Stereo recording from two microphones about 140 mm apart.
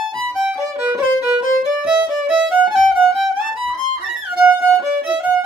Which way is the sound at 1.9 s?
10° right (ahead or behind).